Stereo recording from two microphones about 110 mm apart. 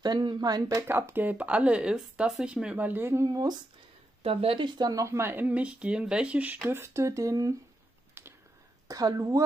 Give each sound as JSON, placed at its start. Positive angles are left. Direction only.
{"t": 0.0, "sound": "speech", "side_deg": -40}
{"t": 0.8, "sound": "speech", "side_deg": -20}
{"t": 4.2, "sound": "speech", "side_deg": -60}
{"t": 5.0, "sound": "speech", "side_deg": -25}
{"t": 8.1, "sound": "a sound", "side_deg": -20}
{"t": 8.8, "sound": "speech", "side_deg": -30}